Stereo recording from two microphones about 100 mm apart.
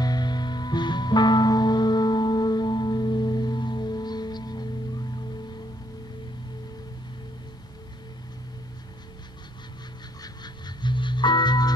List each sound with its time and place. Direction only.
0.0 s music: 45° left (ahead or behind)
10.2 s music: 45° left (ahead or behind)